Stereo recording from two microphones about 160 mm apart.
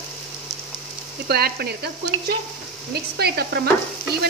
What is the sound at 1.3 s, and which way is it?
Stir, 80° right.